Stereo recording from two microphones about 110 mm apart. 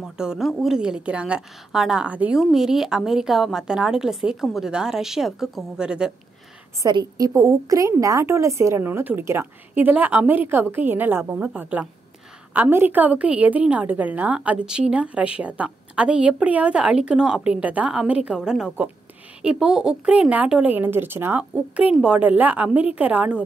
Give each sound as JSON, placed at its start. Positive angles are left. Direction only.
{"t": 0.0, "sound": "a woman's voice", "side_deg": -5}
{"t": 6.9, "sound": "a woman's voice", "side_deg": -40}
{"t": 7.3, "sound": "a woman's voice", "side_deg": -30}